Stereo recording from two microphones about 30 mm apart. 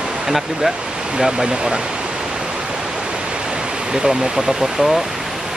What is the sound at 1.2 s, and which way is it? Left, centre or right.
Speech, centre.